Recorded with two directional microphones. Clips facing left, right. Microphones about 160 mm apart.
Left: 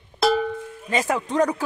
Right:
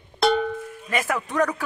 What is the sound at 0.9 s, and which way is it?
Speech, 25° left (ahead or behind).